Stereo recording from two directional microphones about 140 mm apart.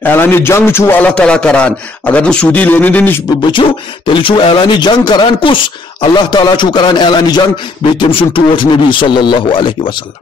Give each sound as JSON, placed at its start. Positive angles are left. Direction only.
{"t": 0.0, "sound": "a man's voice", "side_deg": 15}
{"t": 4.1, "sound": "speech", "side_deg": 40}